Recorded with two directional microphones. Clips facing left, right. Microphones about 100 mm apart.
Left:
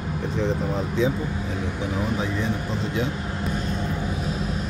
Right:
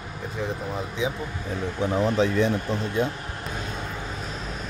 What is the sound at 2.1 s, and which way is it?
Speech, 75° right (ahead or behind).